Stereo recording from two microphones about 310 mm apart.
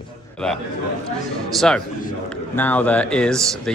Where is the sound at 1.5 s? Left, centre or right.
Centre.